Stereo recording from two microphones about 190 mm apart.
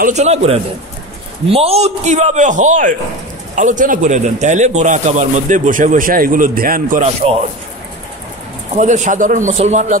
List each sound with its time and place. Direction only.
0.0 s a man's voice: 35° right (ahead or behind)
8.7 s a man's voice: 40° right (ahead or behind)